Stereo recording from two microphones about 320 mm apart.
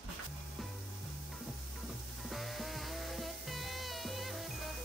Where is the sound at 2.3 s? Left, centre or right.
Centre.